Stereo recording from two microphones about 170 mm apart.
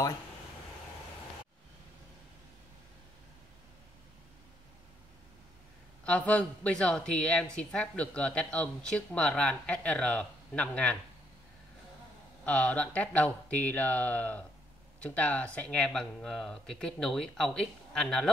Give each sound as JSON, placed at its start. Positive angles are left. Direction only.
{"t": 6.0, "sound": "speech", "side_deg": 10}
{"t": 12.4, "sound": "speech", "side_deg": 10}